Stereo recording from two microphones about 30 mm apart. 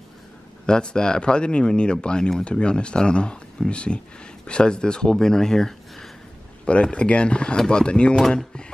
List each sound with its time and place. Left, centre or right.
0.7 s speech: left
5.1 s speech: centre
6.6 s speech: left
7.5 s speech: left